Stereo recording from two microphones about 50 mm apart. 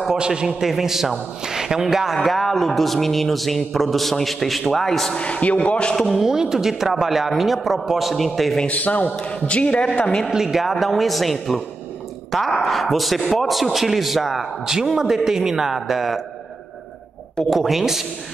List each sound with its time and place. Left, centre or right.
0.2 s a man's voice: centre
2.1 s a man's voice: centre
5.1 s a man's voice: left
6.0 s a man's voice: centre
8.6 s a man's voice: left
10.3 s a man's voice: centre
17.5 s a man's voice: centre